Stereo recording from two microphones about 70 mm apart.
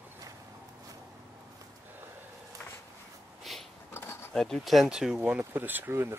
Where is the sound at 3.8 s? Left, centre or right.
Left.